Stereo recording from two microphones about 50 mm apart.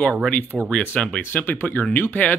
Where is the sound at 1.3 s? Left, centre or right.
Left.